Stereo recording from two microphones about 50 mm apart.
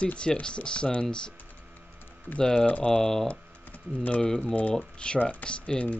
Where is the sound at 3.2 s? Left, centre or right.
Left.